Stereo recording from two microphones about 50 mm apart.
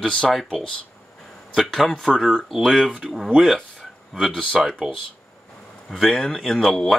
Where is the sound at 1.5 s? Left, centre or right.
Centre.